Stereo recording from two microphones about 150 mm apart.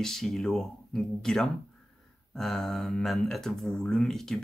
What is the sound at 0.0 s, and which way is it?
Speech, centre (ahead or behind).